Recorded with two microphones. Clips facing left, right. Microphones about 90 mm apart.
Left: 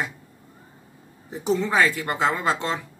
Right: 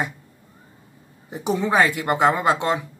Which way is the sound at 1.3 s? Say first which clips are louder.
Right 2 dB; 15° right (ahead or behind).